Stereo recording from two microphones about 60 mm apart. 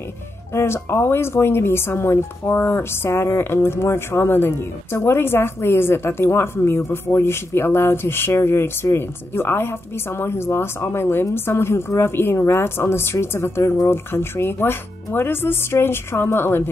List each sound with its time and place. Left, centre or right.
0.5 s a woman's voice: left